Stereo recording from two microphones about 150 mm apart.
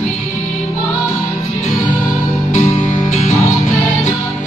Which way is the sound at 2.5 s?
55° left (ahead or behind).